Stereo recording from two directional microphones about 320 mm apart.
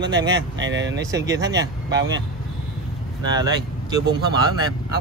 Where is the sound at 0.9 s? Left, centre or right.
Centre.